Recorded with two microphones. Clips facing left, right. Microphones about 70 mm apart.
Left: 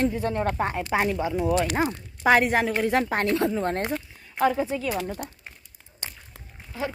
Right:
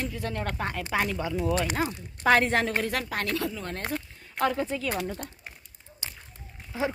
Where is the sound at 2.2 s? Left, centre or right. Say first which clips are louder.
Left 2 dB; centre.